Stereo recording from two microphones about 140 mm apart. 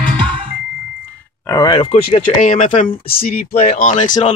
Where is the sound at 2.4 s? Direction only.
65° left (ahead or behind).